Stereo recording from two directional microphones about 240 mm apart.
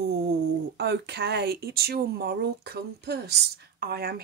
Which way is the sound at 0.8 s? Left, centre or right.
Right.